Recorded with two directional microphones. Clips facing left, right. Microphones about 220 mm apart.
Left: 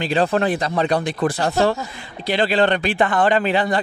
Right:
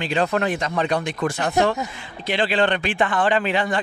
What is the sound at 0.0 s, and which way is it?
Speech, 35° left (ahead or behind).